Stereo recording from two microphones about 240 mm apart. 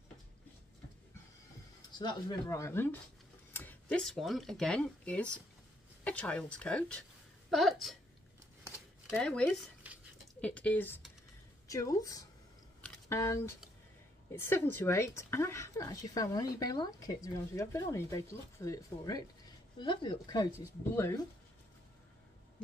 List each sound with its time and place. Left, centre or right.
2.0 s speech: centre
9.1 s speech: centre
12.8 s a sound: centre
14.3 s speech: centre